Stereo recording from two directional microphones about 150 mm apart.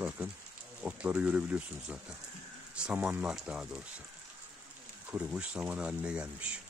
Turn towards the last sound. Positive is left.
turn(degrees=-5)  # may be behind; listen again after turning